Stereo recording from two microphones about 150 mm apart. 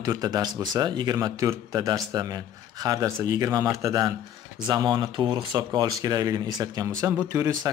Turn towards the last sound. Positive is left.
turn(degrees=-15)  # may be behind; listen again after turning